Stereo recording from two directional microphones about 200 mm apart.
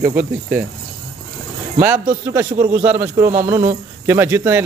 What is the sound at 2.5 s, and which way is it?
Speech, 45° right (ahead or behind).